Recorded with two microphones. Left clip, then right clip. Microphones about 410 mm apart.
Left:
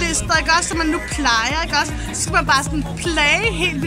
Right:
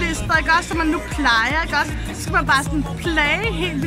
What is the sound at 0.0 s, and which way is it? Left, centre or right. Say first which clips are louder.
Speech: left 1 dB; centre.